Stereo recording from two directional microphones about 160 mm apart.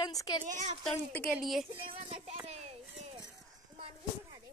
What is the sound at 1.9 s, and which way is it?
Music, 35° right (ahead or behind).